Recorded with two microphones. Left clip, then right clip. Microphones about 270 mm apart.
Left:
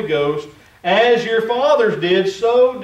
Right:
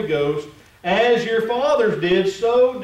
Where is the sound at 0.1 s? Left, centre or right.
Centre.